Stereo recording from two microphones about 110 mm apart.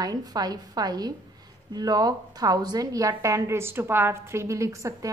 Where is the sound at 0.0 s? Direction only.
35° right (ahead or behind).